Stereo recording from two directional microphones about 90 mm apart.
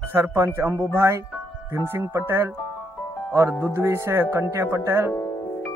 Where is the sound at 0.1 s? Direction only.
30° right (ahead or behind).